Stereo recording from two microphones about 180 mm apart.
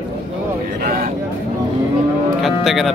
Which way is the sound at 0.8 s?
55° right (ahead or behind).